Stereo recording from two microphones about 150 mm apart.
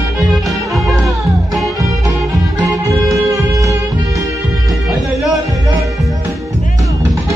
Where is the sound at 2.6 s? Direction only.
20° right (ahead or behind).